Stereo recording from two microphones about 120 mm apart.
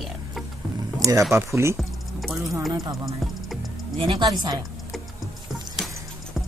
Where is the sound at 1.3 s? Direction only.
25° right (ahead or behind).